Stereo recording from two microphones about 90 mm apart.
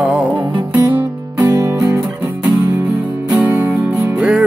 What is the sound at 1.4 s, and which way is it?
Music, 30° right (ahead or behind).